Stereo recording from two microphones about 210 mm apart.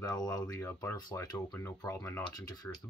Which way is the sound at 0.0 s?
15° left (ahead or behind).